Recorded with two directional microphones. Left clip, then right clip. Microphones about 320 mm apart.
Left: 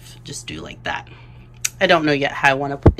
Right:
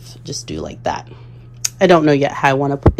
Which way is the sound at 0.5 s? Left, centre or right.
Centre.